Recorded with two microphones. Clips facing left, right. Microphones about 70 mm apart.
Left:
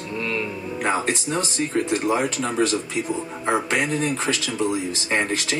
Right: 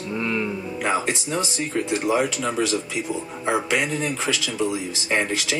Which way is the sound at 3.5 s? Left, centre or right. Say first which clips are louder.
Even; left.